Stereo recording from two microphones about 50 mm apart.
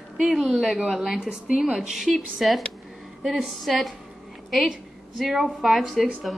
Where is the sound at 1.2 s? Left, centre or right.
Centre.